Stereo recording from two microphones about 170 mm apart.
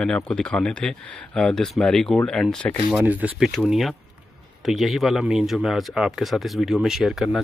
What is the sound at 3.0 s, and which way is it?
Speech, 10° right (ahead or behind).